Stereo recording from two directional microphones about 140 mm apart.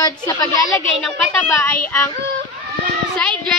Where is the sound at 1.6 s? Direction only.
20° left (ahead or behind).